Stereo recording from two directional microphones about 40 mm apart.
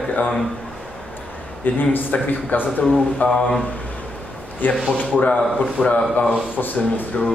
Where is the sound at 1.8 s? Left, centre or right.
Left.